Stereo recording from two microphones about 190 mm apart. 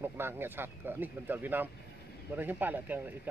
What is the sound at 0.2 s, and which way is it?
Speech, 10° right (ahead or behind).